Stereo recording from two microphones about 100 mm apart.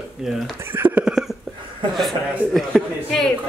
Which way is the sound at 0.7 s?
20° right (ahead or behind).